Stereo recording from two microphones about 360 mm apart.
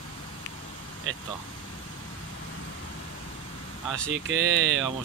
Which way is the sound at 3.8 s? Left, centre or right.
Centre.